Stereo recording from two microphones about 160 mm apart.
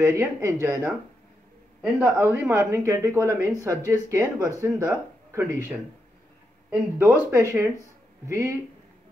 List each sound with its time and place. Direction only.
0.0 s speech: 15° right (ahead or behind)
1.8 s a man's voice: 5° right (ahead or behind)